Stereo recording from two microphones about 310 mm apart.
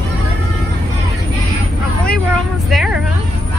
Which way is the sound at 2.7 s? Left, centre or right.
Centre.